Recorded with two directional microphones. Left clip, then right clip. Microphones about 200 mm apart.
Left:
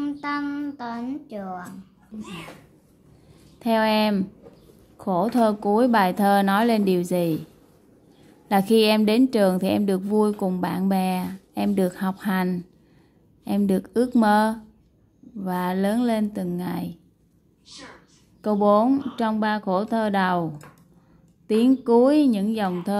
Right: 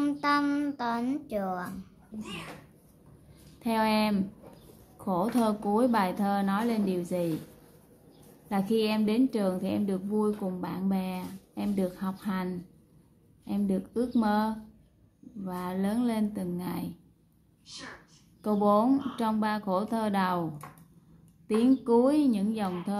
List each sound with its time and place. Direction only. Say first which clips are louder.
0.0 s a child's voice: right 1 dB; 10° right (ahead or behind)
3.5 s a woman's voice: left 7 dB; 30° left (ahead or behind)
8.5 s a woman's voice: left 10 dB; 40° left (ahead or behind)
18.4 s speech: left 6 dB; 25° left (ahead or behind)
21.5 s a woman's voice: left 6 dB; 30° left (ahead or behind)